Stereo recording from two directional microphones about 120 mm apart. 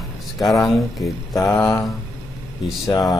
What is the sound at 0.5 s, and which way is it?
Speech, centre (ahead or behind).